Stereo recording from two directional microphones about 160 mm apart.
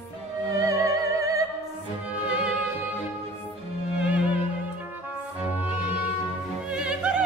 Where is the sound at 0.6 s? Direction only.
20° right (ahead or behind).